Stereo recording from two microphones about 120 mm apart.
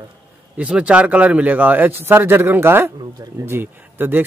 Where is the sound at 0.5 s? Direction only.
10° right (ahead or behind).